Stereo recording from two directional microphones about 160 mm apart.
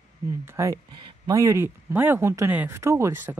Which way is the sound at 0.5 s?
20° right (ahead or behind).